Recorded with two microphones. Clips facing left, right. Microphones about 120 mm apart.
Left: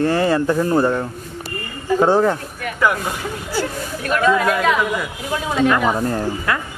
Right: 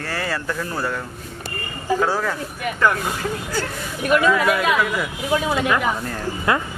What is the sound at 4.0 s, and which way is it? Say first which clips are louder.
Speech: even; 10° right (ahead or behind).